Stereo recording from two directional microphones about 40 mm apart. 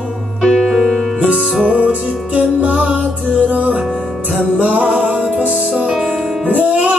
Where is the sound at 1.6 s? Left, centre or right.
Right.